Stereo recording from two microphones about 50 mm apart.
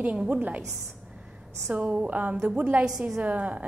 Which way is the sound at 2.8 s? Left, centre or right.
Centre.